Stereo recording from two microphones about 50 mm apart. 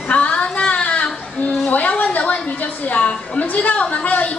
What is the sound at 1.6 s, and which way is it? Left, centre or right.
A woman's voice, left.